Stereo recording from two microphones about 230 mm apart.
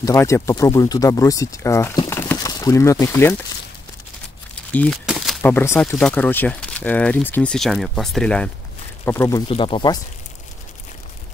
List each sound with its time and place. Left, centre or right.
0.0 s speech: centre
4.7 s speech: centre
9.5 s speech: left